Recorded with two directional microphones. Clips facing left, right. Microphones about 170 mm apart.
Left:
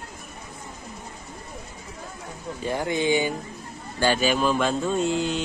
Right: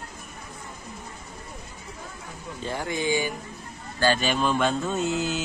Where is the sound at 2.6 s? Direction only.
15° left (ahead or behind).